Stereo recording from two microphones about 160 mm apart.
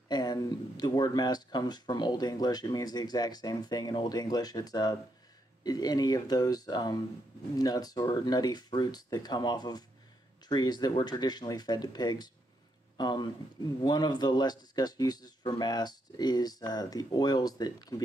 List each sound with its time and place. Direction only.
0.1 s speech: 25° left (ahead or behind)